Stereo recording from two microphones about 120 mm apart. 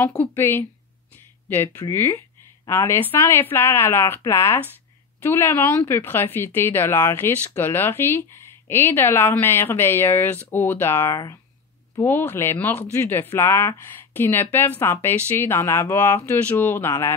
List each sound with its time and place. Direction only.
0.4 s speech: 20° left (ahead or behind)